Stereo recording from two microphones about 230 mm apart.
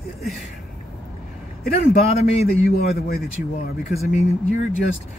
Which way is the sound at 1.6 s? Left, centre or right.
Left.